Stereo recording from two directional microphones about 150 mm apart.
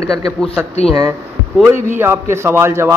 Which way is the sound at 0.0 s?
25° right (ahead or behind).